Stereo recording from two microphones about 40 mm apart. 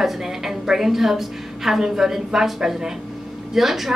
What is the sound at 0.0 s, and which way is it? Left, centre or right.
A woman's voice, centre.